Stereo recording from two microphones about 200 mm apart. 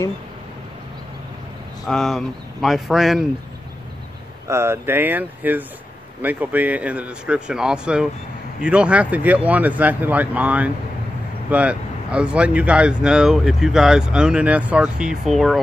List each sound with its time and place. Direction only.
1.9 s speech: centre (ahead or behind)
4.5 s speech: 15° right (ahead or behind)